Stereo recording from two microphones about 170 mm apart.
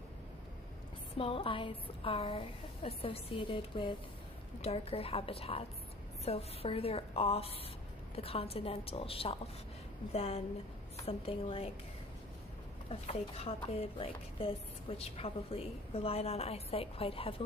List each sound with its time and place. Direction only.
1.1 s a woman's voice: 30° left (ahead or behind)
12.9 s a woman's voice: 35° left (ahead or behind)